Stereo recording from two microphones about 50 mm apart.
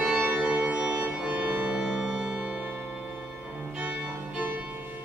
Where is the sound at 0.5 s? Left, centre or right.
Centre.